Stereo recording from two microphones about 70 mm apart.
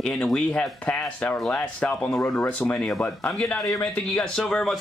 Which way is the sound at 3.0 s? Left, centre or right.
Centre.